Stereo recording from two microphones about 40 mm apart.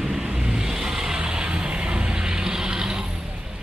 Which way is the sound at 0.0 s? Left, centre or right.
Centre.